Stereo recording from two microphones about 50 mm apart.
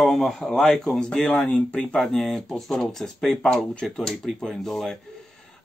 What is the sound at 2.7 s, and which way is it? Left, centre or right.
Speech, centre.